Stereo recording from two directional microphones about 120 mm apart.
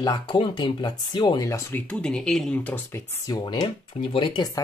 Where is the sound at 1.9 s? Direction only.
5° left (ahead or behind).